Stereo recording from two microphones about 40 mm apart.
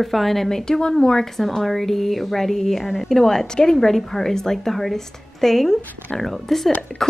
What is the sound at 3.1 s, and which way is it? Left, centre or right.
A woman's voice, centre.